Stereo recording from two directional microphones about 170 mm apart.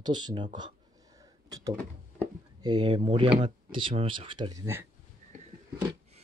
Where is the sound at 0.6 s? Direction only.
25° right (ahead or behind).